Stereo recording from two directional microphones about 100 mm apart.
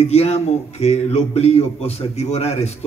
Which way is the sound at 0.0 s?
90° left.